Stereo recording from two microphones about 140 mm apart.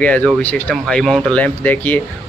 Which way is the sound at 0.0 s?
10° left (ahead or behind).